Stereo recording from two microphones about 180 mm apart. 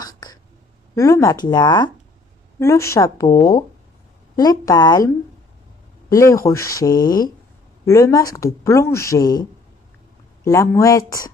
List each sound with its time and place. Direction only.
0.0 s a sound: 20° left (ahead or behind)
0.9 s speech: 15° left (ahead or behind)
10.4 s speech: 15° left (ahead or behind)